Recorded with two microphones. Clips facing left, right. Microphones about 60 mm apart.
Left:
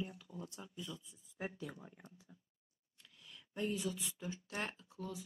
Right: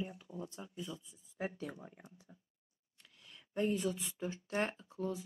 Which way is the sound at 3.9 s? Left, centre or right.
Right.